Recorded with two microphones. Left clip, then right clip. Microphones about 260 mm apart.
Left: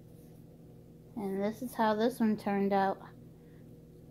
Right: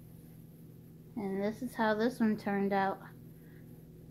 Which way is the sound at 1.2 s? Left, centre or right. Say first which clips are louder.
Left 1 dB; centre.